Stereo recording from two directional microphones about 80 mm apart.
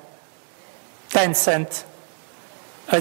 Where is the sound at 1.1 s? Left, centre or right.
Centre.